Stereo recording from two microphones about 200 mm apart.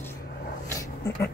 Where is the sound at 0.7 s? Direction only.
15° left (ahead or behind).